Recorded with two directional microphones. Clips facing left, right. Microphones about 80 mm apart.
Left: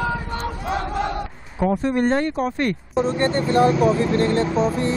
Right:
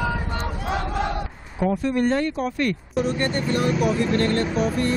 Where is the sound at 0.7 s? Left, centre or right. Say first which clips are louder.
Left 1 dB; left.